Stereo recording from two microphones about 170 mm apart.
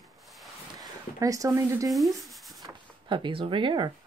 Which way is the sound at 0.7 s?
20° right (ahead or behind).